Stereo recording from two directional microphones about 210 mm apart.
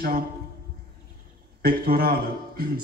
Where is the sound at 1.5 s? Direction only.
45° right (ahead or behind).